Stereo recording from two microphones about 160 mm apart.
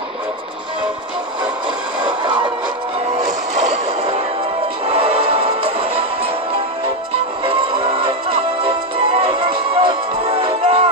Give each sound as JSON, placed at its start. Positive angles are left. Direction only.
{"t": 2.2, "sound": "music", "side_deg": -30}
{"t": 3.7, "sound": "music", "side_deg": -35}
{"t": 7.4, "sound": "music", "side_deg": -35}